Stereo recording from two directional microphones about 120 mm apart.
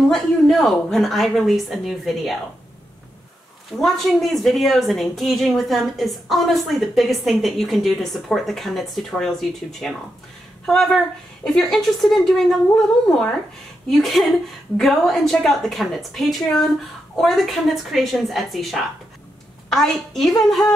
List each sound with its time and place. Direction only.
0.1 s a woman's voice: centre (ahead or behind)
3.7 s a woman's voice: centre (ahead or behind)